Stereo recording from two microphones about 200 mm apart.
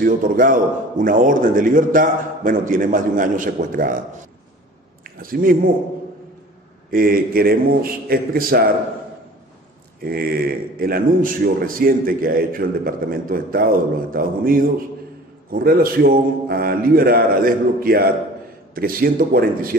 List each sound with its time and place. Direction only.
0.0 s a man's voice: 45° right (ahead or behind)
6.9 s a man's voice: 45° right (ahead or behind)
10.0 s a man's voice: 50° right (ahead or behind)